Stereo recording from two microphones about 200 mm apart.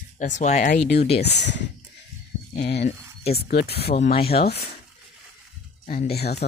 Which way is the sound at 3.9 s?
35° left (ahead or behind).